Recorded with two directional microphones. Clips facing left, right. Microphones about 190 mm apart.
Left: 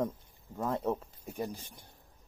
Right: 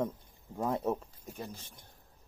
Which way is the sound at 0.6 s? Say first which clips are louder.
Even; 10° right (ahead or behind).